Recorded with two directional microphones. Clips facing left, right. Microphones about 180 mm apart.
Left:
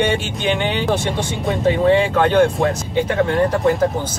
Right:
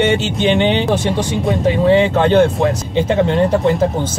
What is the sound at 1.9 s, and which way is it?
Speech, 20° right (ahead or behind).